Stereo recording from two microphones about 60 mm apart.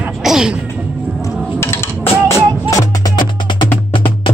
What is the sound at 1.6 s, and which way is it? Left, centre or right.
Music, left.